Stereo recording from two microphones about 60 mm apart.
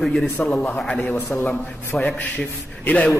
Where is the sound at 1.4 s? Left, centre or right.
Left.